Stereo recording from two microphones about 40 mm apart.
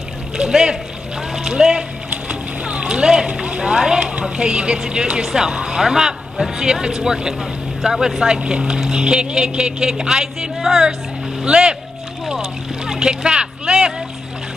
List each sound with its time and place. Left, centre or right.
0.5 s speech: centre
2.6 s boat: right
3.6 s speech: centre
11.4 s speech: right
12.8 s speech: centre